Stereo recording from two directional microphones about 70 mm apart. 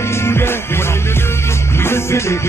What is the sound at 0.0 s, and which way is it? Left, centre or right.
Music, left.